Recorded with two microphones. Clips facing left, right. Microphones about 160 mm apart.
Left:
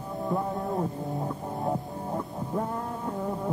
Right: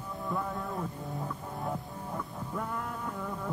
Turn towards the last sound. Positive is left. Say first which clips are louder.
# left 6 dB
turn(degrees=35)  # may be behind; listen again after turning